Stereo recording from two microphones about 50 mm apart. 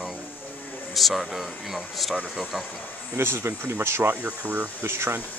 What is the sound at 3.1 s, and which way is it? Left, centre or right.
Speech, right.